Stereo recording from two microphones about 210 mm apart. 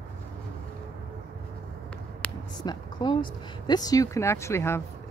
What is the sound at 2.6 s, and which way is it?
Speech, 20° left (ahead or behind).